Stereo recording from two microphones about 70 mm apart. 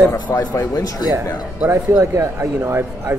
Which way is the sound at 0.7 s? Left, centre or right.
Left.